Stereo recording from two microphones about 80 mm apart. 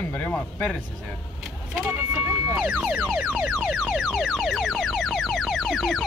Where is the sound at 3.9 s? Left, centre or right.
Centre.